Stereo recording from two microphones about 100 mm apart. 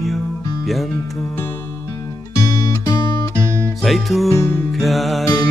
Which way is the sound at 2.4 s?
40° left (ahead or behind).